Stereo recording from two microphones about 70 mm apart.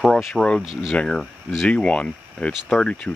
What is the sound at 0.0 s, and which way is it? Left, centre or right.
Speech, centre.